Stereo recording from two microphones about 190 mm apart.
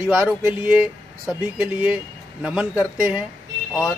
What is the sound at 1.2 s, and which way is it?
Speech, 5° right (ahead or behind).